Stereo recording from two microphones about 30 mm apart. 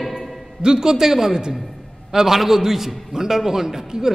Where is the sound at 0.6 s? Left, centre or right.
Right.